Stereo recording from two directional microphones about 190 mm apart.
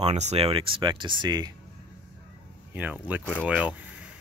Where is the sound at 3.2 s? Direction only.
5° left (ahead or behind).